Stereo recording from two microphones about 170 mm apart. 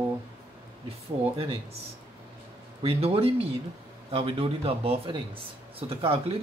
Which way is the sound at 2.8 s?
35° right (ahead or behind).